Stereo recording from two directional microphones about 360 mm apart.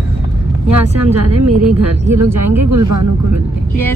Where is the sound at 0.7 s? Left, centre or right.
Right.